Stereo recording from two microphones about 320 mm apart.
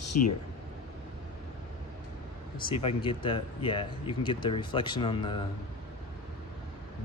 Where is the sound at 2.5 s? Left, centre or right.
Centre.